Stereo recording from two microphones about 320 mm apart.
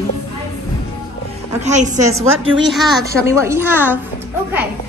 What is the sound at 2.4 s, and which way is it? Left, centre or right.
Speech, right.